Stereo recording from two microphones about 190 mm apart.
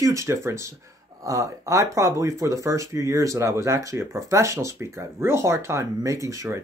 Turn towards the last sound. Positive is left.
turn(degrees=-15)  # may be behind; listen again after turning